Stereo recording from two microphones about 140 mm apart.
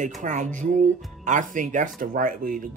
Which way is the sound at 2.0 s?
80° right.